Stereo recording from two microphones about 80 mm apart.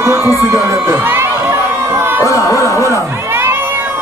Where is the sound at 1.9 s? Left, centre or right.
Right.